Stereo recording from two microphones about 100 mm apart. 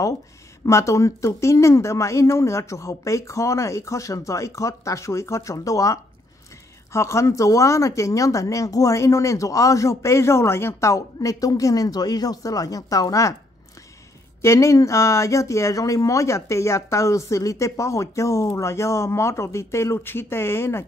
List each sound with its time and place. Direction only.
0.7 s speech: 30° left (ahead or behind)
14.4 s speech: 30° left (ahead or behind)